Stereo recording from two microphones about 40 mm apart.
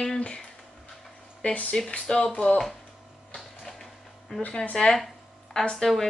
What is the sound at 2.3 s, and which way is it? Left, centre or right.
Speech, left.